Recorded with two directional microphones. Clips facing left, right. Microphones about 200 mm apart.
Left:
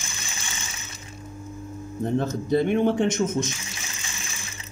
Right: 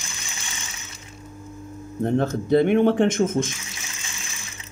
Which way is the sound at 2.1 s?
60° right (ahead or behind).